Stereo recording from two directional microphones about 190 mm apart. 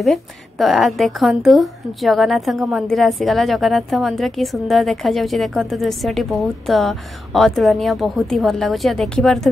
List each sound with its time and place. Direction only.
0.0 s speech: centre (ahead or behind)